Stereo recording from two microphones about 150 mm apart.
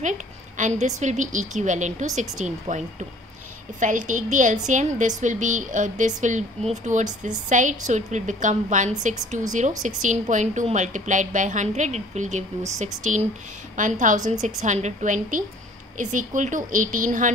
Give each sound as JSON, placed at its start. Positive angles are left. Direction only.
{"t": 0.6, "sound": "a woman's voice", "side_deg": -50}
{"t": 3.8, "sound": "a woman's voice", "side_deg": -55}